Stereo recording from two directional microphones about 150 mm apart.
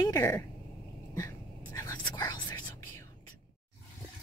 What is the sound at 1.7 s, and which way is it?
Whispering, 25° left (ahead or behind).